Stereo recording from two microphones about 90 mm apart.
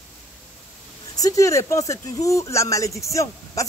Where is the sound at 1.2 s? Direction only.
35° left (ahead or behind).